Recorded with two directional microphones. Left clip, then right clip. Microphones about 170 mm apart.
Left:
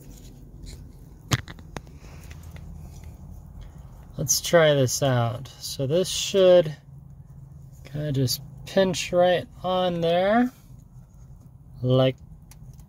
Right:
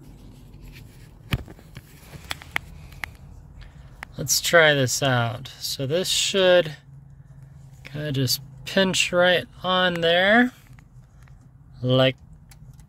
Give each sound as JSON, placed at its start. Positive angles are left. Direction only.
{"t": 4.1, "sound": "speech", "side_deg": 20}
{"t": 7.8, "sound": "speech", "side_deg": 10}
{"t": 11.8, "sound": "speech", "side_deg": 10}